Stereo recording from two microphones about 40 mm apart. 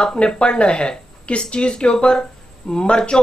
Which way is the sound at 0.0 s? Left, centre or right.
Centre.